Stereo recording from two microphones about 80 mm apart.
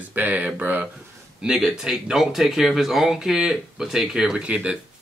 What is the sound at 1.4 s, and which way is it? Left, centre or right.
Speech, centre.